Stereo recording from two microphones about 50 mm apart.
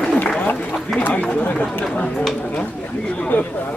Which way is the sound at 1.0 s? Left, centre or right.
Left.